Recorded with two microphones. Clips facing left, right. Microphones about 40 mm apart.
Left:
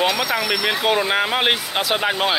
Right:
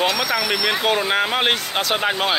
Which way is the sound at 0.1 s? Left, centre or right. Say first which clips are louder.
Even; left.